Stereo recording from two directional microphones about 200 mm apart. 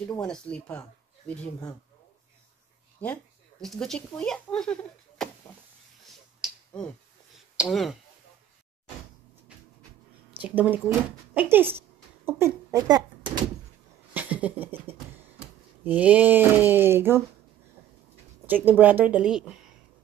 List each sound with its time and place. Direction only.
0.2 s speech: 5° left (ahead or behind)
3.0 s speech: 5° left (ahead or behind)
6.0 s finger snapping: centre (ahead or behind)
7.6 s speech: centre (ahead or behind)
10.4 s speech: 10° right (ahead or behind)
14.1 s a sound: 10° right (ahead or behind)
15.8 s speech: 10° right (ahead or behind)
18.5 s speech: 10° right (ahead or behind)